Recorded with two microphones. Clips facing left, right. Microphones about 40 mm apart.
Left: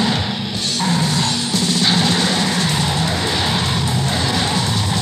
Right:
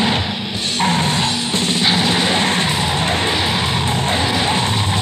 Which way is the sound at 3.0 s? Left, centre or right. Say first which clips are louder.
Right 2 dB; right.